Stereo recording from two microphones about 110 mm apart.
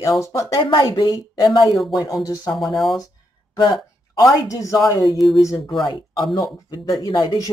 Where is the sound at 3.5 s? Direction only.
45° left (ahead or behind).